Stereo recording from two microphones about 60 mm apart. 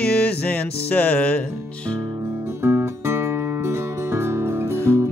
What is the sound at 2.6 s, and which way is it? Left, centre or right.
Music, right.